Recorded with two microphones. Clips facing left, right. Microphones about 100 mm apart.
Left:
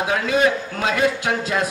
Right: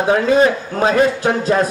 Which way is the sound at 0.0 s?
35° right (ahead or behind).